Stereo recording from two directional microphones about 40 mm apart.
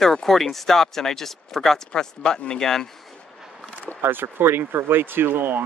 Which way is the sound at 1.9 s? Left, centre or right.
Left.